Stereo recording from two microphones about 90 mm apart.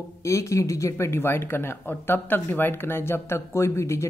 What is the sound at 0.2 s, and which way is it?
Speech, 35° left (ahead or behind).